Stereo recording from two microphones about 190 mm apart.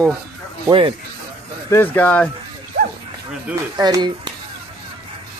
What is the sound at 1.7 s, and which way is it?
Speech, 10° left (ahead or behind).